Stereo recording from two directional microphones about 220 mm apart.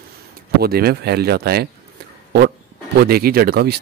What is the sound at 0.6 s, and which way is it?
Speech, 45° right (ahead or behind).